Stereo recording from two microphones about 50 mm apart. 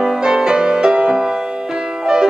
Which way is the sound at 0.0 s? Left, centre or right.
Centre.